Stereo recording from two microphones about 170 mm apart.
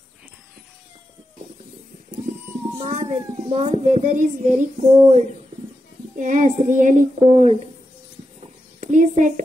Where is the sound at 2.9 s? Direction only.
50° right (ahead or behind).